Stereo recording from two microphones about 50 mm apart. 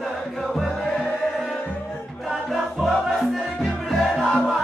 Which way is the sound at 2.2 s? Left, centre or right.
Centre.